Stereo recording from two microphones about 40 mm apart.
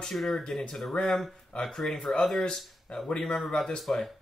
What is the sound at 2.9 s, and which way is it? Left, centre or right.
Speech, left.